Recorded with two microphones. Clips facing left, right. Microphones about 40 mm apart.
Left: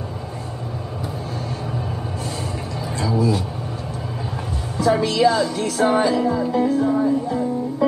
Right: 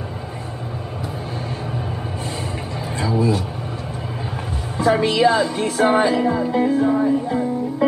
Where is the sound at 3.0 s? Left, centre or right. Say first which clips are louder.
Right 1 dB; right.